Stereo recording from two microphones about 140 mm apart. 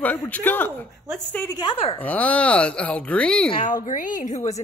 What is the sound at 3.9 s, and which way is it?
Speech, 70° left (ahead or behind).